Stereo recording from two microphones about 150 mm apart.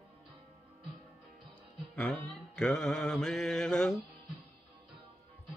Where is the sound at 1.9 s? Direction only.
5° left (ahead or behind).